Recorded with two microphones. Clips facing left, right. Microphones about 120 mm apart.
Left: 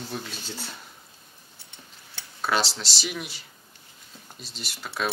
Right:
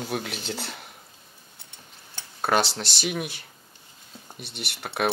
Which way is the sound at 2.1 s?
50° right (ahead or behind).